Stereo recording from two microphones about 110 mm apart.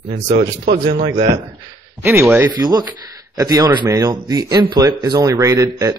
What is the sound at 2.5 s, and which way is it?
Speech, 35° right (ahead or behind).